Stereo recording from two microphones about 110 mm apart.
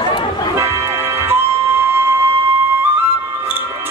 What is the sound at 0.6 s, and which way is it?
Music, 25° right (ahead or behind).